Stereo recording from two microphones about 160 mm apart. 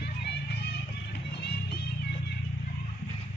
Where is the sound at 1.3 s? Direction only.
85° left.